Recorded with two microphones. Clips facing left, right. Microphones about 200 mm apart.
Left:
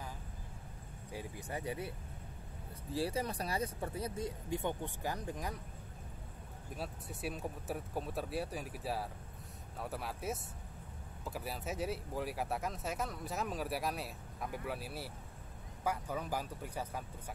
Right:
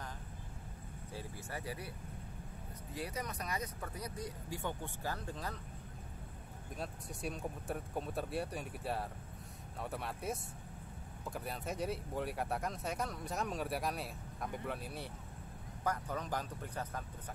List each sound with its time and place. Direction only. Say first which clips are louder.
1.1 s speech: left 3 dB; 20° left (ahead or behind)
6.8 s speech: left 1 dB; 5° left (ahead or behind)